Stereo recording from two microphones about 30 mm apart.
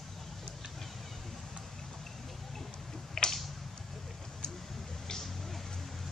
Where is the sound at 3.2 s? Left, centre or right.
Left.